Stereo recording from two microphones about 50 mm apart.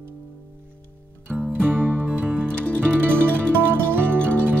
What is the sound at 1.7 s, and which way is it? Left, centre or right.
Music, right.